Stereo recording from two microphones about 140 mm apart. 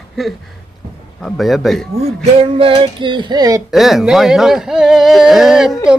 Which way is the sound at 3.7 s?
Centre (ahead or behind).